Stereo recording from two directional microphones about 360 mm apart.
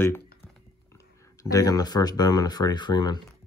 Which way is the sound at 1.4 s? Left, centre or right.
Centre.